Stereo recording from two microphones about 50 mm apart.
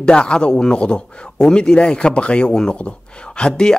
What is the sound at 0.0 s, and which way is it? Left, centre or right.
A man's voice, centre.